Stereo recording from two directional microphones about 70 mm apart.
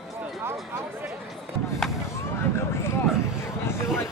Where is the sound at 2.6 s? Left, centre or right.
Left.